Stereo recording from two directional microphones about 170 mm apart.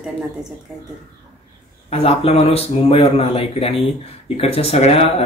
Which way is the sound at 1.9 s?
35° left (ahead or behind).